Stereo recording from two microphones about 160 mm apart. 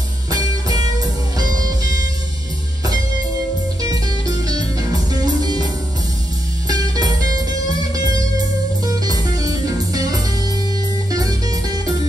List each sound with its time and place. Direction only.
0.3 s music: 25° right (ahead or behind)
3.8 s music: 25° right (ahead or behind)
6.7 s music: 25° right (ahead or behind)
8.8 s music: 25° right (ahead or behind)